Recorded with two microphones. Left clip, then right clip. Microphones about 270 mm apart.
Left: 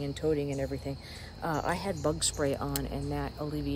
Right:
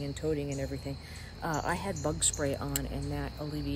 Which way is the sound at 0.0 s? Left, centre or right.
Centre.